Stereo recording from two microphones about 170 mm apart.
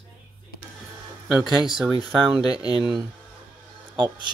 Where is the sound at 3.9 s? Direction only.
30° right (ahead or behind).